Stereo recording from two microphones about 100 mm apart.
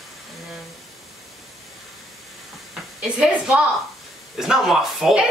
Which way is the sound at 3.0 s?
10° right (ahead or behind).